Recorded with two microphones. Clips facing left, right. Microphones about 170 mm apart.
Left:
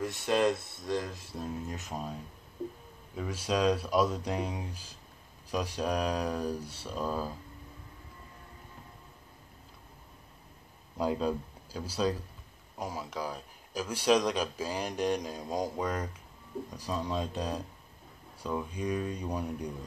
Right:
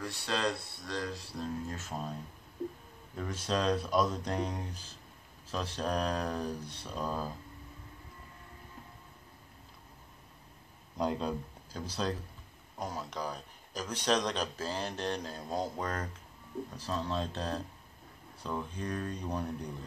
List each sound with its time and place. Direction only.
0.0 s speech: 20° left (ahead or behind)
3.2 s speech: 10° left (ahead or behind)
11.0 s speech: 5° left (ahead or behind)